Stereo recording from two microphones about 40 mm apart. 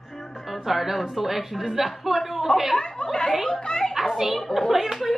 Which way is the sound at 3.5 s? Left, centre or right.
Centre.